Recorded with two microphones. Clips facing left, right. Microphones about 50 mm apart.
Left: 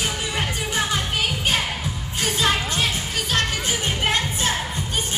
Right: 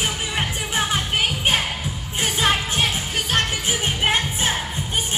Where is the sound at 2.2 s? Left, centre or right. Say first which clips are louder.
Right 1 dB; right.